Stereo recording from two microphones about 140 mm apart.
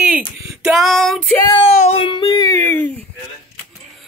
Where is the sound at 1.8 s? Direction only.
40° left (ahead or behind); by 2.9 s 15° left (ahead or behind).